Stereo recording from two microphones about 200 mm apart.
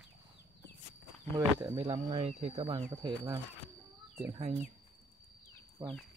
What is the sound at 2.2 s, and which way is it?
Speech, 30° right (ahead or behind).